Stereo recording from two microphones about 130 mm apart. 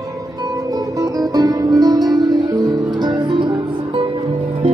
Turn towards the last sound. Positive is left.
turn(degrees=-40)  # may be behind; listen again after turning